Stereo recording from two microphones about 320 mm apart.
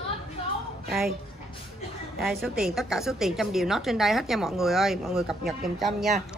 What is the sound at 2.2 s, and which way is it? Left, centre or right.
A woman's voice, centre.